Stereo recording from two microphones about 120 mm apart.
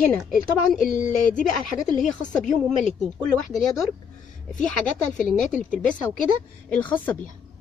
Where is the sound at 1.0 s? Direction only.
90° left.